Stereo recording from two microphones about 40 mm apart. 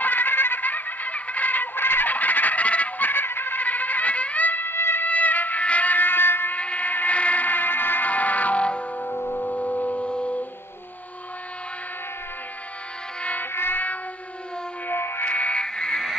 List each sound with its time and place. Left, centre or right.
0.0 s music: left
2.0 s music: left
3.1 s music: left
3.6 s music: left
4.6 s music: left
5.0 s music: left
6.5 s music: left
8.1 s music: left
9.0 s music: left
13.4 s a sound: left
14.9 s music: left
15.2 s music: left
15.6 s a sound: centre